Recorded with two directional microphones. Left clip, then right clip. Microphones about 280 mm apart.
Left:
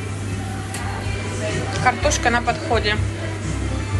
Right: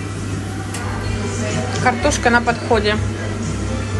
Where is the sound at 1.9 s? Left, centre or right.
Centre.